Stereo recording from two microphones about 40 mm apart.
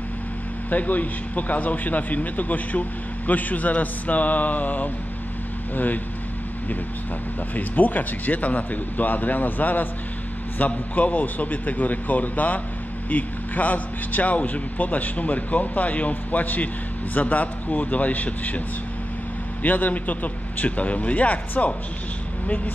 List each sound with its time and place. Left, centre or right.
0.7 s a man's voice: left
7.5 s a man's voice: left
19.6 s speech: left